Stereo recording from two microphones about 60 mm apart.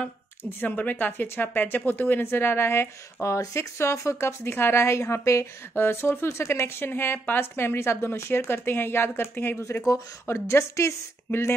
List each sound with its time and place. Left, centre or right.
0.4 s speech: left
6.2 s speech: left
6.6 s speech: left
10.2 s speech: left